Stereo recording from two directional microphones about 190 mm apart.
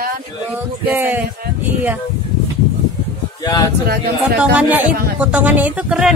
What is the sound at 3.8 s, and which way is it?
Speech, 55° right (ahead or behind).